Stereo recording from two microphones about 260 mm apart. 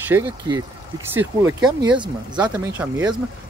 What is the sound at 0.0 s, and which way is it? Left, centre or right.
Speech, centre.